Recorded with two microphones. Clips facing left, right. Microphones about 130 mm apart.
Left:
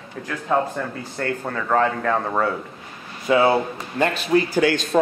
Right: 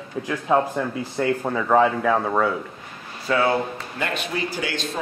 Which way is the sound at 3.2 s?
25° left (ahead or behind).